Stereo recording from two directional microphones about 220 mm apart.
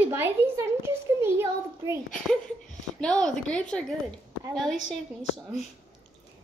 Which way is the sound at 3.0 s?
5° left (ahead or behind).